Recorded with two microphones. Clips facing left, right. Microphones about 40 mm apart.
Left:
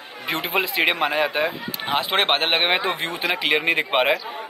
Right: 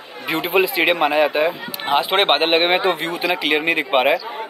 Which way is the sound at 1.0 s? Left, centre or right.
Centre.